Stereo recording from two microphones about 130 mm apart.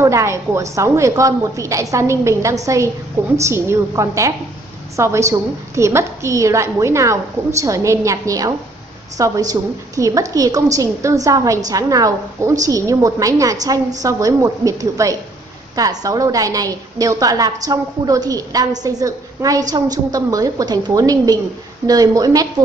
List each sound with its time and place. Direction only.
0.0 s a woman's voice: 20° right (ahead or behind)